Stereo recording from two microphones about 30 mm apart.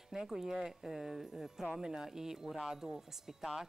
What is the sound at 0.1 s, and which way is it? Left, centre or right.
Speech, centre.